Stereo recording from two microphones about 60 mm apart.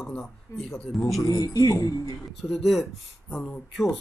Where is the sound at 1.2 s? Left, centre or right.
Left.